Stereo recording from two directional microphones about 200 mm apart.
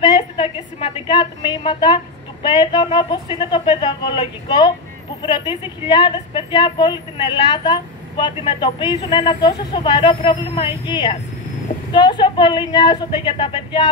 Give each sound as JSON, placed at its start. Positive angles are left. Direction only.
{"t": 0.0, "sound": "a woman's voice", "side_deg": 30}